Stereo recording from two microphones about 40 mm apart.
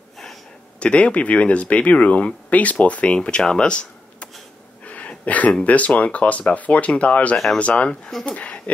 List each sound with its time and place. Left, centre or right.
0.7 s speech: left
3.2 s speech: left